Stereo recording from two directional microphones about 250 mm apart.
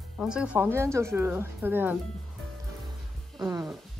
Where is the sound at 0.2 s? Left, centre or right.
Centre.